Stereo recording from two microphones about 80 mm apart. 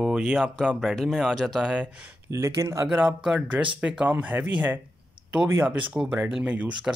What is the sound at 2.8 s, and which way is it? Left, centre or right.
Speech, centre.